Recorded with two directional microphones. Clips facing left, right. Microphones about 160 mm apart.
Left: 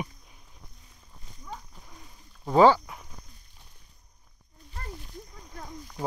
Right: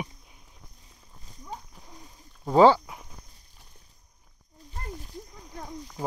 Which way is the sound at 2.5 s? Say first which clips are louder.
Right 1 dB; 20° right (ahead or behind).